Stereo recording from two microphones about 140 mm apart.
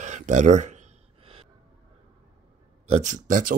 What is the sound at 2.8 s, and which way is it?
Speech, 55° right (ahead or behind).